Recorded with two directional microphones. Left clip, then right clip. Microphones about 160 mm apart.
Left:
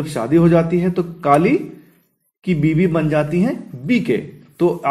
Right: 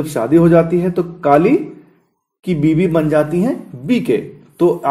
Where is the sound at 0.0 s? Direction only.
20° right (ahead or behind).